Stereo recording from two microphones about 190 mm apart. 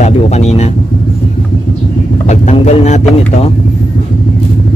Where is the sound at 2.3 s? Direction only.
35° left (ahead or behind).